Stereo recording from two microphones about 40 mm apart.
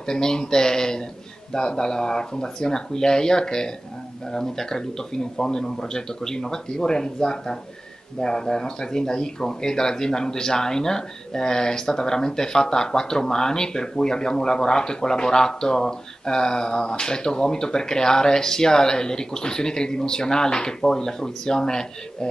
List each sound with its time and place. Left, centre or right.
0.0 s speech: centre